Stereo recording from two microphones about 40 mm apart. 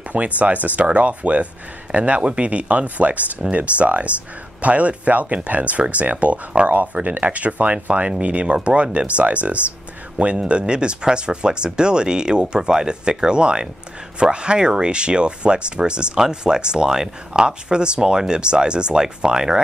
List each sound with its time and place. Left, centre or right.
0.1 s speech: right
10.4 s speech: right